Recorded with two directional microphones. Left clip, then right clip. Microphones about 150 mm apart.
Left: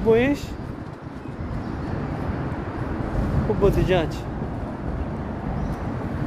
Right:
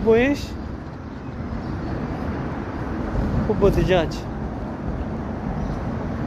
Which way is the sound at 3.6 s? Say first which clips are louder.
Right 2 dB; 20° left (ahead or behind).